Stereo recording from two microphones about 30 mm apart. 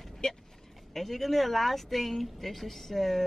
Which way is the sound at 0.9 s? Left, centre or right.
Centre.